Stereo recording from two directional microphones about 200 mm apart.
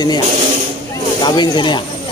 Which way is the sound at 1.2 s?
20° left (ahead or behind).